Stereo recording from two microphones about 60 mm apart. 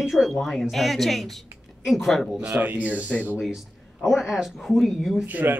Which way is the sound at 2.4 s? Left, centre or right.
Right.